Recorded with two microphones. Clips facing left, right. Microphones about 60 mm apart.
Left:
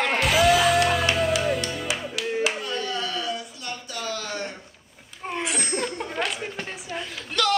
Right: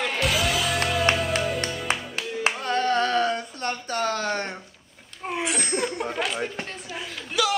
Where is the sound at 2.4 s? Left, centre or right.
Right.